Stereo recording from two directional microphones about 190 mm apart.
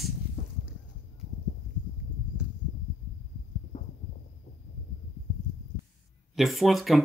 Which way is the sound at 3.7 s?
40° left (ahead or behind).